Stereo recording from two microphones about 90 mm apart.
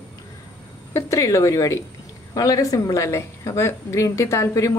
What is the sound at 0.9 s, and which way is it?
A woman's voice, 35° left (ahead or behind).